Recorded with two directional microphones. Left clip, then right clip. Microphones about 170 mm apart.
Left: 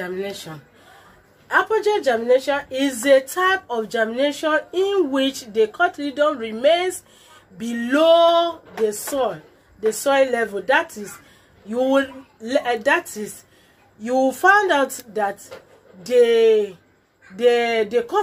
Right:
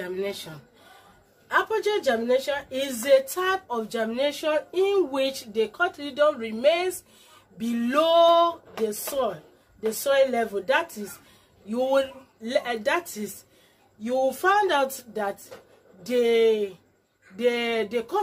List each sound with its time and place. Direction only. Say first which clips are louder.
0.0 s a woman's voice: left 3 dB; 15° left (ahead or behind)
1.5 s a woman's voice: left 5 dB; 15° left (ahead or behind)